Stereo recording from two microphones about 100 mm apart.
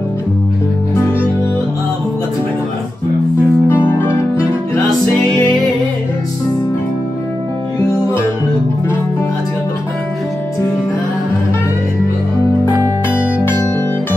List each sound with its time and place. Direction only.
3.6 s music: 25° left (ahead or behind)
5.1 s music: centre (ahead or behind)
13.1 s music: 20° left (ahead or behind)